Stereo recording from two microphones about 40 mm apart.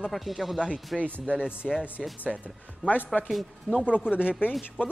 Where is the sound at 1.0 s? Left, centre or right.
Right.